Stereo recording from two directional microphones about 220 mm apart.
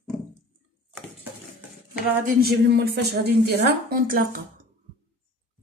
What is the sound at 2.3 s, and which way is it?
A woman's voice, 45° right (ahead or behind).